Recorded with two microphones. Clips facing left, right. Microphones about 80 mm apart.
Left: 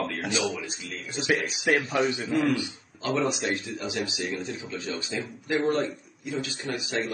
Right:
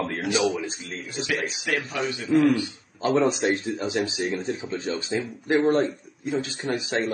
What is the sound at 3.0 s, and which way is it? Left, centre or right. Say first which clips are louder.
A man's voice: right 5 dB; right.